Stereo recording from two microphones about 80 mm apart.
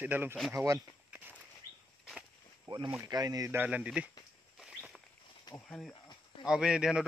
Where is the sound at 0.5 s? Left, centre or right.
Right.